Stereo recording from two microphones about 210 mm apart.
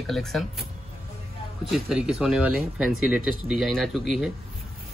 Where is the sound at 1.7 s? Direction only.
Centre (ahead or behind).